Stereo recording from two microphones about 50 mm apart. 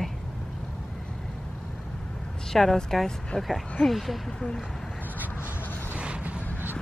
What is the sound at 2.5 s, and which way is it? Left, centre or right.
Speech, centre.